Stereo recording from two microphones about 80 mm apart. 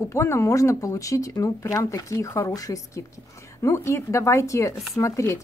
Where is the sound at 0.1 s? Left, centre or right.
Left.